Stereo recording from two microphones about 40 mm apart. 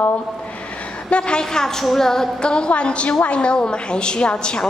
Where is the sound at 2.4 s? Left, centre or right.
Left.